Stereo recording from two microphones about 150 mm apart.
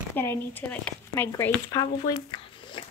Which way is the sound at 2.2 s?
35° left (ahead or behind).